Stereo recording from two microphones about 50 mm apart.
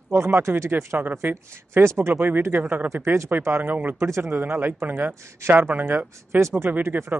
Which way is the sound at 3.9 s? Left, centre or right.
Right.